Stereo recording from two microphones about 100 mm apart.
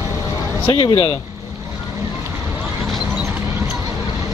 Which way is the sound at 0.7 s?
55° left (ahead or behind).